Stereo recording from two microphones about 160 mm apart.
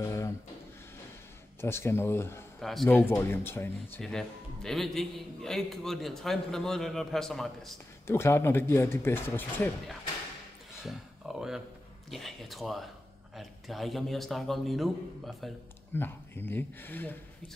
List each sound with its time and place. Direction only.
0.0 s a sound: 20° left (ahead or behind)
1.6 s speech: 15° left (ahead or behind)
2.6 s a man's voice: centre (ahead or behind)
3.1 s speech: 15° left (ahead or behind)
4.0 s a man's voice: 5° left (ahead or behind)
8.1 s speech: 15° left (ahead or behind)
10.8 s a sound: 5° right (ahead or behind)
12.1 s a man's voice: centre (ahead or behind)
15.9 s speech: 15° left (ahead or behind)